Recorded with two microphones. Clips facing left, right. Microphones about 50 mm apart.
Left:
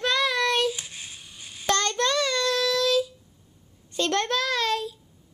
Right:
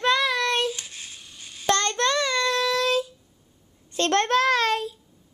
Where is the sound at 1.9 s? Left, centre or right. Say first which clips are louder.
Right 1 dB; right.